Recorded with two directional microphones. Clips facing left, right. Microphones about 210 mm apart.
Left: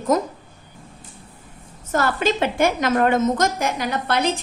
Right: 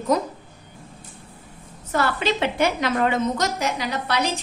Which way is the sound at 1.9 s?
45° left (ahead or behind).